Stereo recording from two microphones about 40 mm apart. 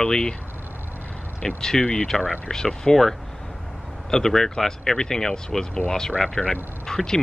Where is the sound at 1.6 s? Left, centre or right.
Centre.